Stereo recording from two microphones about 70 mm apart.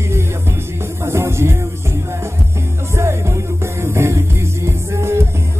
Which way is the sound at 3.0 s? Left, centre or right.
Right.